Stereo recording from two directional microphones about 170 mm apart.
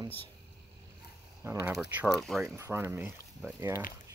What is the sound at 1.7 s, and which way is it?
Speech, 5° right (ahead or behind).